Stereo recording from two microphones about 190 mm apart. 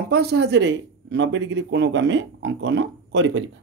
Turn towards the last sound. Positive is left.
turn(degrees=-75)  # may be behind; listen again after turning